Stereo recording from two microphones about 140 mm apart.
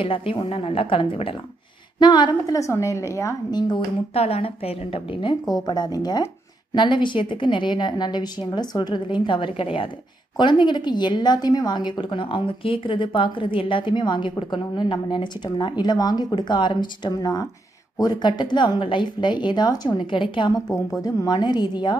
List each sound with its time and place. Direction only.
0.0 s a woman's voice: 40° left (ahead or behind)
4.1 s a woman's voice: 45° left (ahead or behind); by 21.9 s 30° left (ahead or behind)